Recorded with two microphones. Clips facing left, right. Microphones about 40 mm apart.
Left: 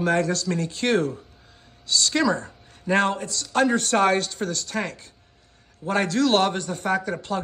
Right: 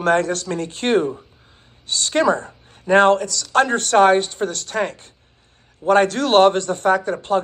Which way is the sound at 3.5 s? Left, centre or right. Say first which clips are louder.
Right 4 dB; right.